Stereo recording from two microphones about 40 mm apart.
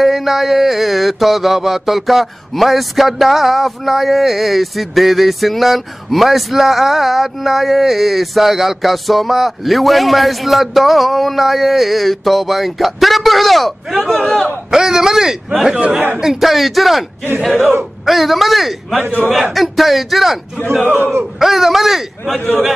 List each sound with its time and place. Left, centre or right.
0.0 s mantra: centre
14.7 s speech: centre
16.2 s mantra: centre
21.0 s speech: right
21.4 s mantra: centre